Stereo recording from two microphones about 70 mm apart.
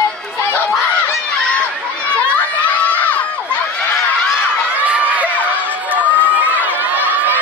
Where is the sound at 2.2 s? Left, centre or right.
Left.